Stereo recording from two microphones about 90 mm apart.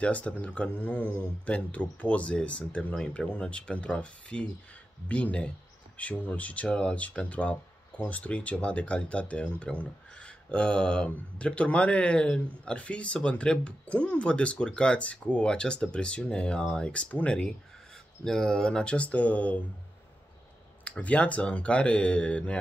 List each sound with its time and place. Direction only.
0.0 s speech: 15° left (ahead or behind)
20.8 s speech: 15° left (ahead or behind)